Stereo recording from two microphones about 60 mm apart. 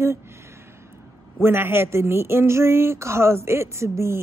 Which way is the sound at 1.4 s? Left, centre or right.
Right.